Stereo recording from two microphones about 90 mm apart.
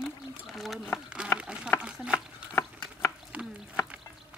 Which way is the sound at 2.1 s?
25° left (ahead or behind).